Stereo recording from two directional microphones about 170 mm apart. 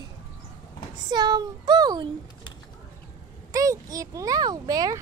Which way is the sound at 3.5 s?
20° right (ahead or behind).